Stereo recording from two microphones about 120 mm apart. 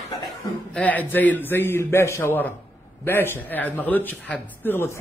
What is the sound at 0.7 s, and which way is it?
A man's voice, 15° left (ahead or behind).